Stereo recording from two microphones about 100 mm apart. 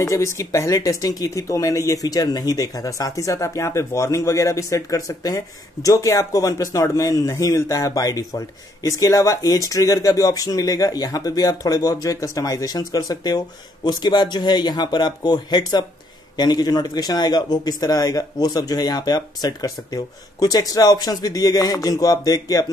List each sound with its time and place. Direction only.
0.0 s speech: 30° left (ahead or behind)